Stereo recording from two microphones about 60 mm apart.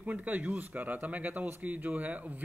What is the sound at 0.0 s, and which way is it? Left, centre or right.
Speech, right.